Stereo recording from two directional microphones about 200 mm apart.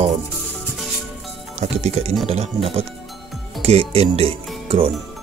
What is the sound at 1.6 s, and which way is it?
Speech, 30° right (ahead or behind).